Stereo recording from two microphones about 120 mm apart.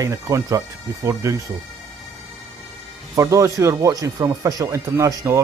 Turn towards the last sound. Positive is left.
turn(degrees=-30)  # may be behind; listen again after turning